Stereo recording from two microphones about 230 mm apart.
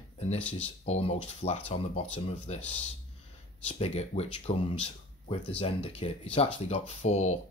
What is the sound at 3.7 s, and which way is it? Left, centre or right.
Speech, left.